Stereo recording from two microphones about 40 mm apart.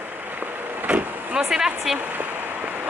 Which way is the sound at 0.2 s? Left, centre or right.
Right.